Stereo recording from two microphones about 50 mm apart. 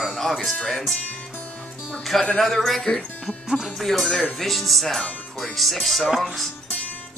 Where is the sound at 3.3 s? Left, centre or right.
Centre.